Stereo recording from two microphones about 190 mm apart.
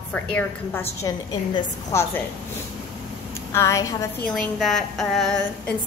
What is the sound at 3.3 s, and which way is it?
Speech, 15° left (ahead or behind).